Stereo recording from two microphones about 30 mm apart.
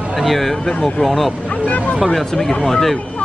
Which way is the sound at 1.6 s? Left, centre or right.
Left.